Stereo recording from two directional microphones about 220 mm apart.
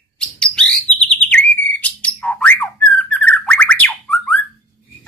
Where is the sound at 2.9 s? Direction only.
5° left (ahead or behind).